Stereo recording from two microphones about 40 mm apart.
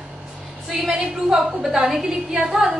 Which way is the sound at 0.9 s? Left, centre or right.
Centre.